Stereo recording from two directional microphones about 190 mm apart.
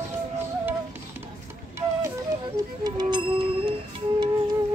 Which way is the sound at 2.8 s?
25° right (ahead or behind).